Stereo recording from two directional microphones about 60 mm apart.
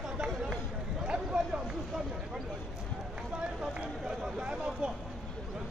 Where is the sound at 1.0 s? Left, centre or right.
Centre.